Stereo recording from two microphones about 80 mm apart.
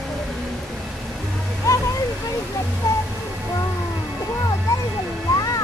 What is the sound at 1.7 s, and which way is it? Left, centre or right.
Music, left.